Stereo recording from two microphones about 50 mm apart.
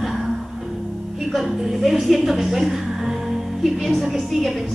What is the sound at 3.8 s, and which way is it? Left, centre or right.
Speech, centre.